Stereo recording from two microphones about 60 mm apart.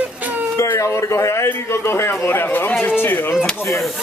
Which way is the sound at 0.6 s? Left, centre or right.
Left.